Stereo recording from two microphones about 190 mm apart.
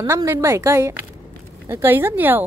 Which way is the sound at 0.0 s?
15° right (ahead or behind).